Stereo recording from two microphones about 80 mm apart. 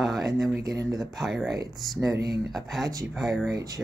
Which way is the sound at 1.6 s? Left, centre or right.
Right.